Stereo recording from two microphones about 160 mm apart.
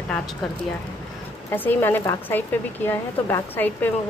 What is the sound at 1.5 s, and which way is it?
A woman's voice, 10° left (ahead or behind).